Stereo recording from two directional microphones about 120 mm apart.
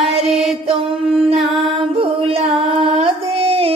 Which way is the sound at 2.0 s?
55° right (ahead or behind).